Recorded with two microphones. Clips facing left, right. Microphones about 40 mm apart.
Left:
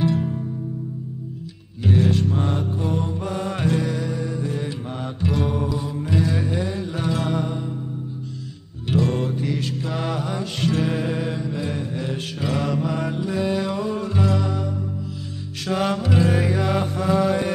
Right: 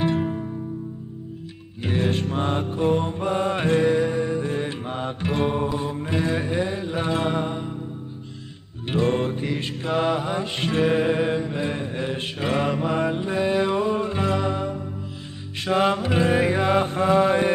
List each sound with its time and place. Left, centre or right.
0.0 s music: right
1.8 s music: right
8.8 s music: right
16.8 s mantra: right